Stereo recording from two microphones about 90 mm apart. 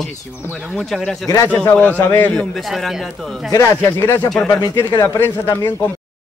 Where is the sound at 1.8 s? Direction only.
20° left (ahead or behind).